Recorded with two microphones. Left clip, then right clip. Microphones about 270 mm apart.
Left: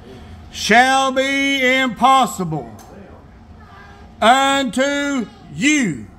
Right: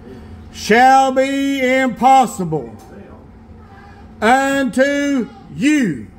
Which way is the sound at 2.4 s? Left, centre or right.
Left.